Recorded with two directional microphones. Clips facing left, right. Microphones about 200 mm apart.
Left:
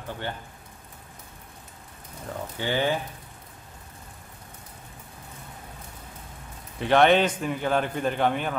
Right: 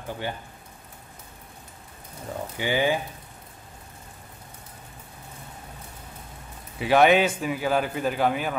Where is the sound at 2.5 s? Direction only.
10° right (ahead or behind).